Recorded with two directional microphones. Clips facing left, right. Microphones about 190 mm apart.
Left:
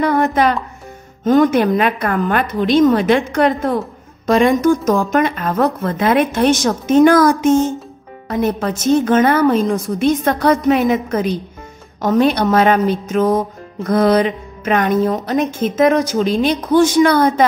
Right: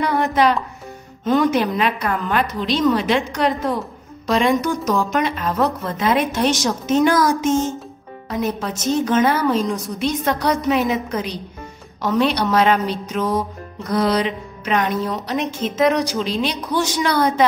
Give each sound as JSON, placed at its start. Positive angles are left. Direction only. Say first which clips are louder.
{"t": 0.0, "sound": "a woman's voice", "louder": "left 3 dB", "side_deg": 50}